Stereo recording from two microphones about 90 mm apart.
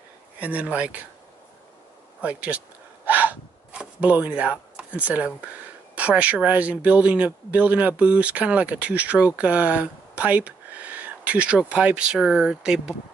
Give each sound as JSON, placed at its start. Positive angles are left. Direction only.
{"t": 0.4, "sound": "speech", "side_deg": -15}
{"t": 2.2, "sound": "speech", "side_deg": -15}